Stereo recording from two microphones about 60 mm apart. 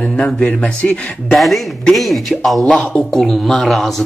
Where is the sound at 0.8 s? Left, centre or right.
Left.